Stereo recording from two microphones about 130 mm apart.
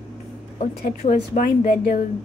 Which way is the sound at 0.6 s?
70° left (ahead or behind).